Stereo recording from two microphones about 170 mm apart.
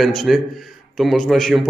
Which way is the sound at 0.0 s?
Centre (ahead or behind).